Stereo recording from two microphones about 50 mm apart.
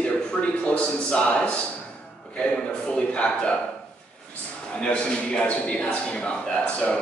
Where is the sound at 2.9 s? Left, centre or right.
Left.